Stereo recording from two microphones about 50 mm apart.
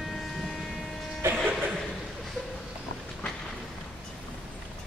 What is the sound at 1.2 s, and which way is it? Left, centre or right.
Music, right.